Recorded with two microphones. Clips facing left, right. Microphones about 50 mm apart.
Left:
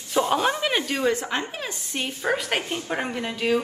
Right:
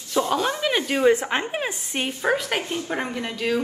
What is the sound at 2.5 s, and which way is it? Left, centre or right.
Speech, left.